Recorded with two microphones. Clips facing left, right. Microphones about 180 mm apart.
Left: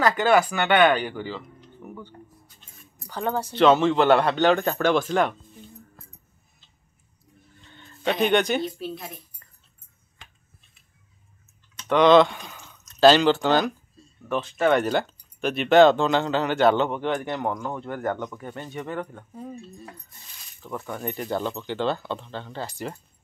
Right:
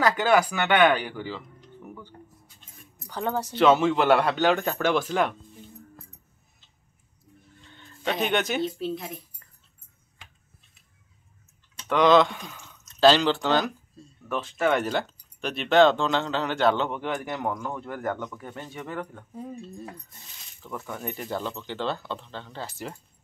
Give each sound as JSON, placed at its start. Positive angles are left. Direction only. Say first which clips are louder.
{"t": 0.0, "sound": "speech", "louder": "left 2 dB", "side_deg": -10}
{"t": 3.1, "sound": "speech", "louder": "left 1 dB", "side_deg": -20}
{"t": 3.5, "sound": "speech", "louder": "left 2 dB", "side_deg": -10}
{"t": 7.7, "sound": "a sound", "louder": "left 3 dB", "side_deg": 0}
{"t": 8.7, "sound": "speech", "louder": "right 3 dB", "side_deg": -20}
{"t": 11.9, "sound": "speech", "louder": "left 3 dB", "side_deg": 0}
{"t": 18.1, "sound": "speech", "louder": "left 2 dB", "side_deg": 15}
{"t": 18.4, "sound": "speech", "louder": "left 3 dB", "side_deg": -5}
{"t": 20.6, "sound": "speech", "louder": "left 3 dB", "side_deg": 10}
{"t": 21.0, "sound": "speech", "louder": "left 4 dB", "side_deg": 0}